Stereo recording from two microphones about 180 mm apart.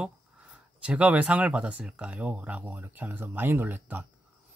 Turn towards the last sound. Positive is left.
turn(degrees=-10)  # may be behind; listen again after turning